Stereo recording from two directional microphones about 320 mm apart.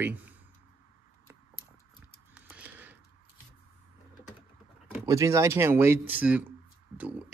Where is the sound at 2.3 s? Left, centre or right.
Centre.